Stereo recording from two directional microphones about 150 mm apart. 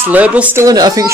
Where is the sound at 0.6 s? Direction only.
25° right (ahead or behind).